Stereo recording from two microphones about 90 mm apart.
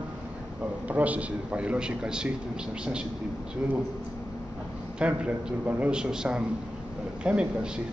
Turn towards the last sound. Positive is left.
turn(degrees=-10)  # may be behind; listen again after turning